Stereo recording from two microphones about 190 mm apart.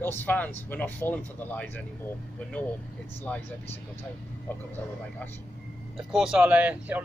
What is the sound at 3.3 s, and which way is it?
Speech, 5° left (ahead or behind).